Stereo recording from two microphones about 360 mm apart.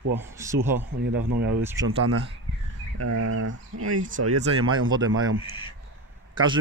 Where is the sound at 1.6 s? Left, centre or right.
Centre.